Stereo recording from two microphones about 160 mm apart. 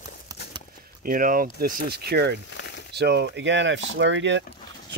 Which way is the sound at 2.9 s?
90° right.